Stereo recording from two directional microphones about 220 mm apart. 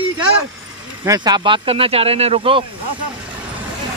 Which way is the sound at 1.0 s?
15° right (ahead or behind).